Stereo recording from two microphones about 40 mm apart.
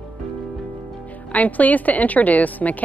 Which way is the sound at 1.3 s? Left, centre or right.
Left.